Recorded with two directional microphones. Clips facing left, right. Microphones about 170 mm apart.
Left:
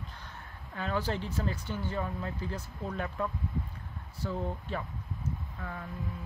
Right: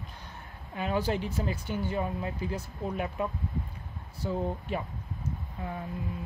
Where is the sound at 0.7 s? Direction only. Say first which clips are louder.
Right 3 dB; 15° right (ahead or behind).